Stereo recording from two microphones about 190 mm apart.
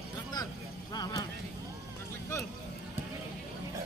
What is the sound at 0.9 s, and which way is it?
Speech, 20° left (ahead or behind).